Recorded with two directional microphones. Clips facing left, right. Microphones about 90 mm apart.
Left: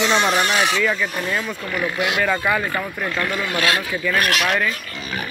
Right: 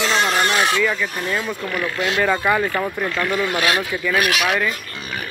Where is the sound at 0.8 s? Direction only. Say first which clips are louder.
Even; 5° left (ahead or behind).